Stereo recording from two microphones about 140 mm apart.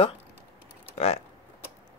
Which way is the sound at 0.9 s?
50° left (ahead or behind).